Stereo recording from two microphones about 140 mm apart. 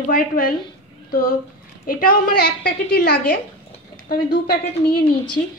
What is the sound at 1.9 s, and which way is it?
A woman's voice, 90° left.